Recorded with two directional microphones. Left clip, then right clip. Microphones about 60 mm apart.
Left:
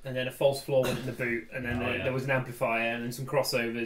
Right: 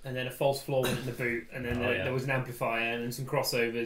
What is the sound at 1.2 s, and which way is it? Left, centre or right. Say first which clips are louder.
Speech: left 2 dB; centre.